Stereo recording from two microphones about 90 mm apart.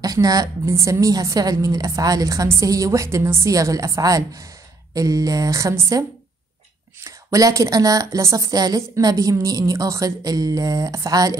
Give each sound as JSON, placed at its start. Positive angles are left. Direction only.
{"t": 0.0, "sound": "a woman's voice", "side_deg": -45}